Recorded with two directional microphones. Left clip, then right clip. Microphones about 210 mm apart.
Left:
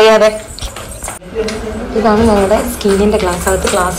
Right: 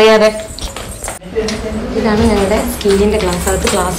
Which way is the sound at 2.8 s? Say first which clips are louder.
Even; 5° right (ahead or behind).